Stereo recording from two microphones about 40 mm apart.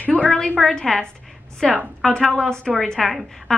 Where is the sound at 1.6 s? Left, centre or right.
Right.